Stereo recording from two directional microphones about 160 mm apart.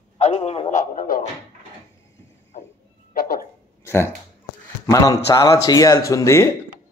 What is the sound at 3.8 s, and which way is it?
A man's voice, 15° left (ahead or behind).